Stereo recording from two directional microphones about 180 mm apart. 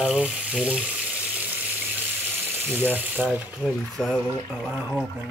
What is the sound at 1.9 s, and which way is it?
Ratchet, 10° right (ahead or behind).